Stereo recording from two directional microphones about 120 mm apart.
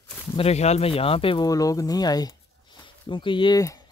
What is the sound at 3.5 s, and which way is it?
Speech, 30° left (ahead or behind).